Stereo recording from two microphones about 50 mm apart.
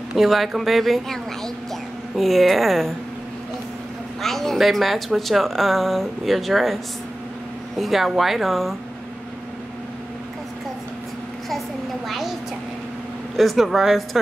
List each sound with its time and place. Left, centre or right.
0.1 s speech: centre
4.2 s speech: centre
12.1 s a sound: centre
13.4 s speech: centre